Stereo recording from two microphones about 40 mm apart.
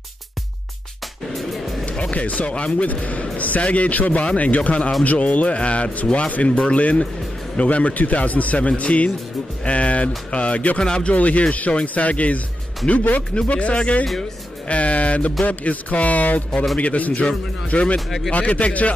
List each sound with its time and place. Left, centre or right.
1.3 s music: centre
1.9 s a man's voice: left
10.8 s speech: left
11.1 s a man's voice: left
17.9 s speech: centre
18.3 s a man's voice: left